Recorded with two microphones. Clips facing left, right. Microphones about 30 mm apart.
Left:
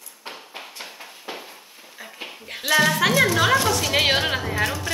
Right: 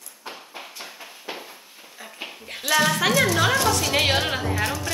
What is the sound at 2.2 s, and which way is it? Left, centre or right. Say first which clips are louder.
Music: even; centre.